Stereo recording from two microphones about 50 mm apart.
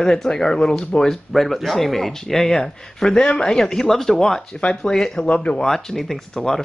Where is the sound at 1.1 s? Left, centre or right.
Centre.